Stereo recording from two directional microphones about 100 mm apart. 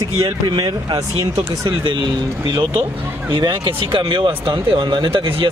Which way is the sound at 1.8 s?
50° right (ahead or behind).